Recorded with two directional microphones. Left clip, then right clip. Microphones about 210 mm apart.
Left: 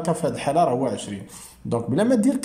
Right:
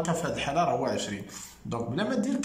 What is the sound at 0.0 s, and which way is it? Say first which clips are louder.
Speech: left 6 dB; 25° left (ahead or behind).